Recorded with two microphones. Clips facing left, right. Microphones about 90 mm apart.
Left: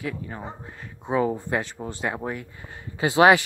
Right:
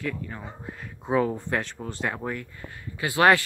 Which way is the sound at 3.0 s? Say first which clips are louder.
Left 3 dB; 20° left (ahead or behind).